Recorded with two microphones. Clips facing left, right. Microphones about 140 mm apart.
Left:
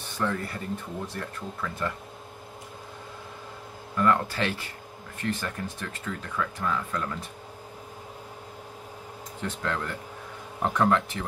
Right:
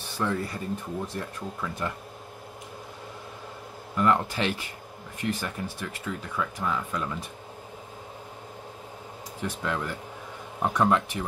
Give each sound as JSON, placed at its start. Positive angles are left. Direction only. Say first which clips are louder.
{"t": 0.2, "sound": "speech", "louder": "right 1 dB", "side_deg": -15}
{"t": 3.9, "sound": "speech", "louder": "even", "side_deg": -20}
{"t": 9.4, "sound": "speech", "louder": "right 1 dB", "side_deg": -10}